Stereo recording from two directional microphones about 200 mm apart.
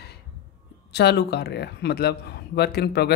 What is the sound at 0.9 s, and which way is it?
Speech, 55° left (ahead or behind).